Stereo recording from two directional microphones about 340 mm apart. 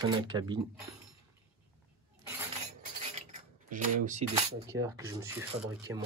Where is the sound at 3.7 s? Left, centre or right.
Right.